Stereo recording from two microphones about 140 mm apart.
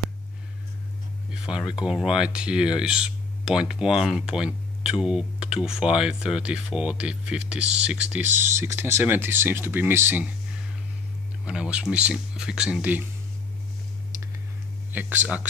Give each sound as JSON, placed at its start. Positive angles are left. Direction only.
{"t": 1.3, "sound": "speech", "side_deg": -5}
{"t": 11.4, "sound": "speech", "side_deg": -5}
{"t": 14.9, "sound": "speech", "side_deg": -10}